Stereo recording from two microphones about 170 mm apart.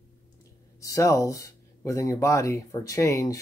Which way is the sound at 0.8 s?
20° left (ahead or behind).